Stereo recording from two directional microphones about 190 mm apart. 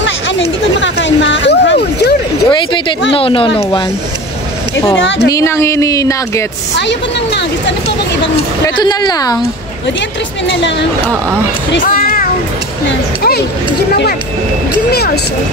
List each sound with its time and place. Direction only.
0.0 s a sound: 70° left (ahead or behind)
2.4 s speech: 25° left (ahead or behind)
5.0 s speech: 75° left (ahead or behind)
5.3 s speech: 15° left (ahead or behind)
6.8 s a woman's voice: 65° left (ahead or behind)
8.6 s speech: 20° left (ahead or behind)
10.4 s speech: 70° left (ahead or behind)
11.8 s music: 50° left (ahead or behind)
14.9 s a woman's voice: 55° left (ahead or behind)